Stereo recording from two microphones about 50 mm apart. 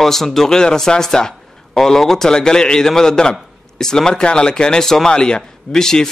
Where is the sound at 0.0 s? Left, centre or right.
Centre.